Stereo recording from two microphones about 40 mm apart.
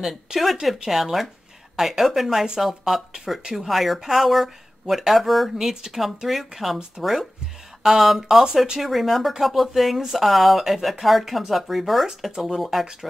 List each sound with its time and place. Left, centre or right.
0.3 s speech: centre
7.8 s speech: centre